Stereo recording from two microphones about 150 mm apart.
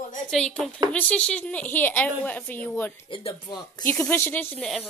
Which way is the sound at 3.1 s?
35° left (ahead or behind).